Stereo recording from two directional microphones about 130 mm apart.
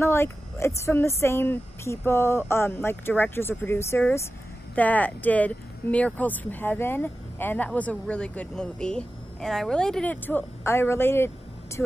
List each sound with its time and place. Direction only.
0.0 s a woman's voice: 20° left (ahead or behind)